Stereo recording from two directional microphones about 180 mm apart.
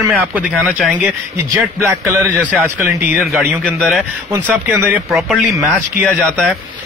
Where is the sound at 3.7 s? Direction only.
Centre (ahead or behind).